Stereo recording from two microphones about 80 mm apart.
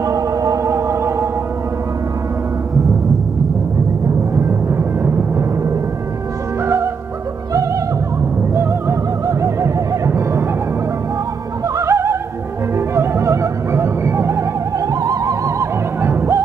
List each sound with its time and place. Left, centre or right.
0.0 s music: right
4.7 s a sound: right
6.6 s music: right
9.2 s music: right
11.7 s opera: right
12.7 s music: right
15.0 s opera: right
16.0 s music: right